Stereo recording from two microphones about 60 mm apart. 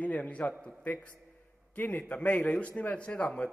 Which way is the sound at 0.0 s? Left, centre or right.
Left.